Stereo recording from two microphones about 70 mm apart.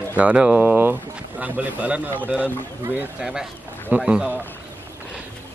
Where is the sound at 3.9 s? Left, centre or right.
Right.